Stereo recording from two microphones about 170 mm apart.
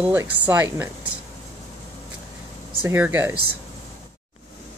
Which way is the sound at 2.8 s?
15° right (ahead or behind).